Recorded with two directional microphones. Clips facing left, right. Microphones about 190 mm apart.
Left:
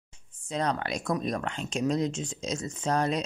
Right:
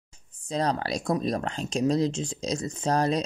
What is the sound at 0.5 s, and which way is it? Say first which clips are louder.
Speech: right 3 dB; 35° right (ahead or behind).